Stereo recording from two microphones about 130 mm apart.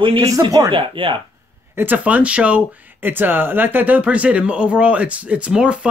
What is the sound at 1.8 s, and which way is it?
Speech, 15° right (ahead or behind).